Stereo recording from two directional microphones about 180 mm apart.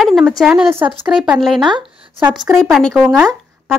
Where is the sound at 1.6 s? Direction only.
25° right (ahead or behind).